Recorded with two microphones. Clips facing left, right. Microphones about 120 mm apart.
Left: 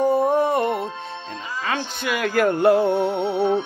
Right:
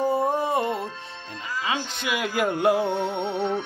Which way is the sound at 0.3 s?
60° left (ahead or behind).